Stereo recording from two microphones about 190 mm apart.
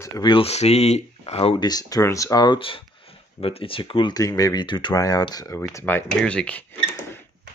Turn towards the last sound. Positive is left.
turn(degrees=10)  # may be behind; listen again after turning